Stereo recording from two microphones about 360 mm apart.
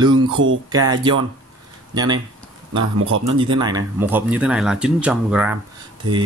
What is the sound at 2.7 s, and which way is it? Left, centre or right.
Speech, right.